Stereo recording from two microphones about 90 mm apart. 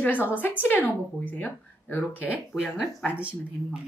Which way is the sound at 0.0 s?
20° left (ahead or behind).